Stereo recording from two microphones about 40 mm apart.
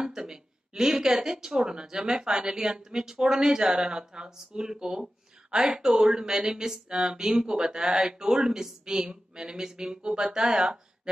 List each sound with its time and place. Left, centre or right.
0.0 s a woman's voice: centre